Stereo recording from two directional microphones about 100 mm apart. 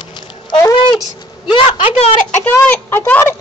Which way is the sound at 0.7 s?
50° left (ahead or behind).